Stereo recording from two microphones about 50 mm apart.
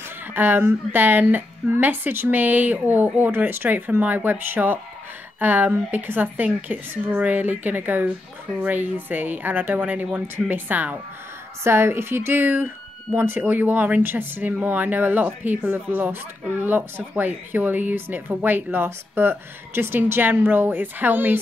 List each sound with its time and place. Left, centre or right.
0.3 s a woman's voice: right
11.6 s a woman's voice: right